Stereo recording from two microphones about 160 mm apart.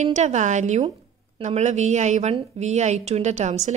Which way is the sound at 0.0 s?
45° right (ahead or behind).